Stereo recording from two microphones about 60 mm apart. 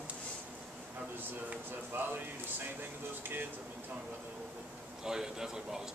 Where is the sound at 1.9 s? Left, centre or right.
Right.